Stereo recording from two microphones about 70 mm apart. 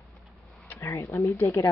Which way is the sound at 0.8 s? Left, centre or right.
Left.